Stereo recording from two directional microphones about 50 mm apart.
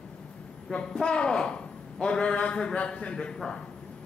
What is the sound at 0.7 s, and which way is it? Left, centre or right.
A man's voice, centre.